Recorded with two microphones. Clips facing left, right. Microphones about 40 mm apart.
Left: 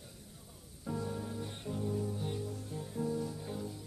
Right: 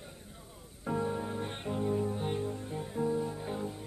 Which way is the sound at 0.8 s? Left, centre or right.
Right.